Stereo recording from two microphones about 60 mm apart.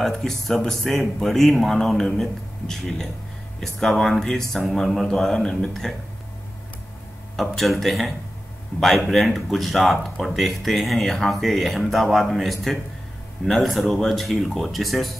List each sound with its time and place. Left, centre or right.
0.0 s speech: centre
7.3 s speech: centre